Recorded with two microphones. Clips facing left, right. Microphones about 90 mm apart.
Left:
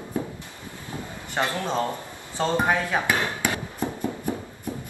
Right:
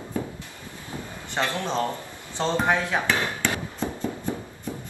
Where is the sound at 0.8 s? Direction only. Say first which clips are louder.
Left 1 dB; 15° left (ahead or behind).